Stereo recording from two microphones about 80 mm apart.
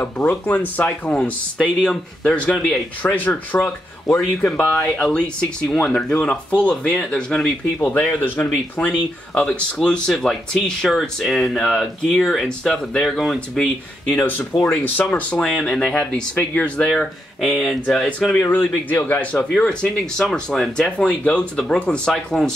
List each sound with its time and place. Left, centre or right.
0.5 s speech: left
1.8 s speech: centre
2.6 s speech: centre
4.4 s speech: centre
9.3 s speech: centre
14.0 s speech: left
14.4 s speech: centre
14.7 s speech: centre
15.7 s speech: centre
16.8 s speech: centre
18.2 s speech: centre